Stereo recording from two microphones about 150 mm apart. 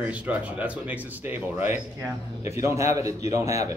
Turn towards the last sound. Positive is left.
turn(degrees=-20)  # may be behind; listen again after turning